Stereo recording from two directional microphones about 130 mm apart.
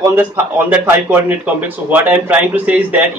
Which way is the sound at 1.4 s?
10° right (ahead or behind).